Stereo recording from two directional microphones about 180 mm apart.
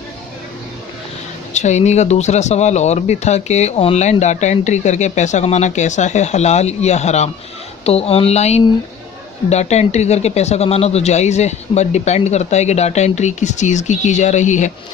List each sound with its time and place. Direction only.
1.5 s speech: 40° left (ahead or behind)